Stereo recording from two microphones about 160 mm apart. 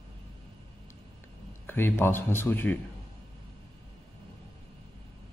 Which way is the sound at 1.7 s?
15° left (ahead or behind).